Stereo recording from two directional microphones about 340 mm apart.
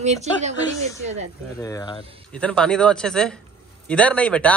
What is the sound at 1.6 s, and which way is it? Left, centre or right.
Speech, centre.